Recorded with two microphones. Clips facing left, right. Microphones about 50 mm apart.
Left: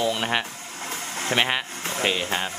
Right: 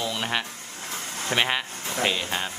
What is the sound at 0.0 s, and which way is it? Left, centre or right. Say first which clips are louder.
Speech: left 4 dB; centre.